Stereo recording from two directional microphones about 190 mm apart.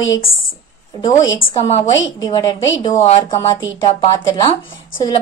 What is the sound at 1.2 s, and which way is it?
Speech, 20° left (ahead or behind).